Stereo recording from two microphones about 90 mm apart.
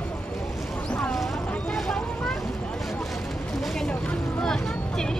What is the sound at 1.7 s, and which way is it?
Vehicle, 5° left (ahead or behind).